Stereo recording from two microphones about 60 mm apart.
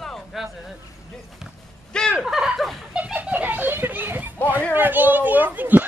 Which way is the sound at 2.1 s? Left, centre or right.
Centre.